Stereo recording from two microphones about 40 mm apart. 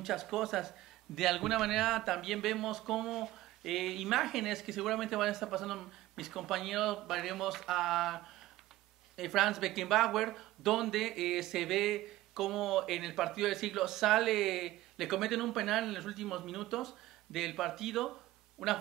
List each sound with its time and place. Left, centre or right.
0.0 s speech: centre